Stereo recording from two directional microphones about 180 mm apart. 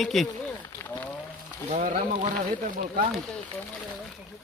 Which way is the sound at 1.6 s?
45° right (ahead or behind).